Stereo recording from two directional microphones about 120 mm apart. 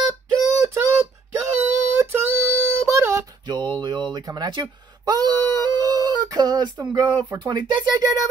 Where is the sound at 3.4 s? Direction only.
40° right (ahead or behind).